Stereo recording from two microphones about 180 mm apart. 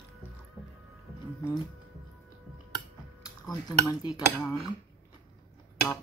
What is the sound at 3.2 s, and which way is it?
Speech, 20° left (ahead or behind).